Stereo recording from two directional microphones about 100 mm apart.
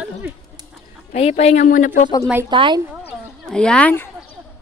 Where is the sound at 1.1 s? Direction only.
90° left.